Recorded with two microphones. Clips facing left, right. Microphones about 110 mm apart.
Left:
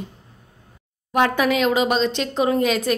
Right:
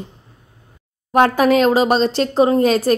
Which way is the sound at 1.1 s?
40° right (ahead or behind).